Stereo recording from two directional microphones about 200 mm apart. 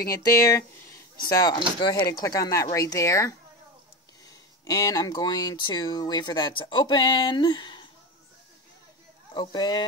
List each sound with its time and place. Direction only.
0.1 s speech: 15° left (ahead or behind)
4.6 s speech: 15° left (ahead or behind)
9.3 s speech: 20° left (ahead or behind)